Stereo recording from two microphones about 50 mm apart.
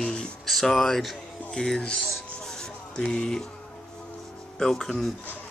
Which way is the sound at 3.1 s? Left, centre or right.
Centre.